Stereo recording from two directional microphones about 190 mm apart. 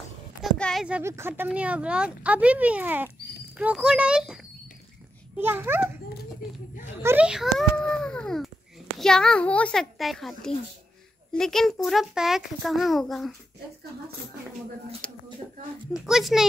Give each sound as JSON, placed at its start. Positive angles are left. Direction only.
{"t": 0.4, "sound": "a child's voice", "side_deg": 0}
{"t": 5.4, "sound": "speech", "side_deg": -10}
{"t": 7.0, "sound": "a child's voice", "side_deg": -10}
{"t": 15.0, "sound": "a child's voice", "side_deg": 5}